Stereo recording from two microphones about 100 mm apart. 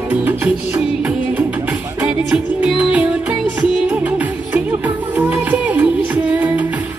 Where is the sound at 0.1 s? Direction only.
20° right (ahead or behind).